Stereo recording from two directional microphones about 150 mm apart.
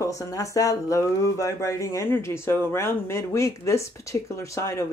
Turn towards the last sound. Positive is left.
turn(degrees=20)  # may be behind; listen again after turning